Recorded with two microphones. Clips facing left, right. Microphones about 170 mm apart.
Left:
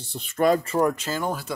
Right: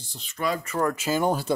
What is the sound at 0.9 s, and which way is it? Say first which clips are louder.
Speech: right 4 dB; 10° right (ahead or behind).